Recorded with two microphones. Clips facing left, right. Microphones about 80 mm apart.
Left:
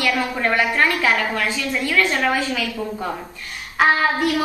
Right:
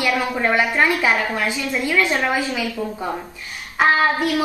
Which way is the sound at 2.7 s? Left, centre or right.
Centre.